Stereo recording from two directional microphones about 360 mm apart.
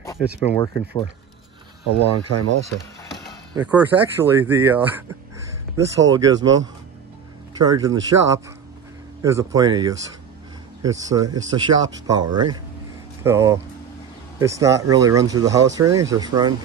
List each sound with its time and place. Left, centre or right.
0.2 s speech: centre
2.0 s speech: right
3.5 s speech: centre